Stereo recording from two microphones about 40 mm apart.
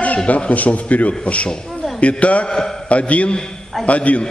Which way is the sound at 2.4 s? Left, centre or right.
Centre.